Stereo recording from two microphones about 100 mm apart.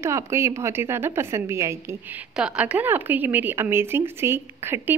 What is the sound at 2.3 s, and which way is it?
A woman's voice, 10° right (ahead or behind).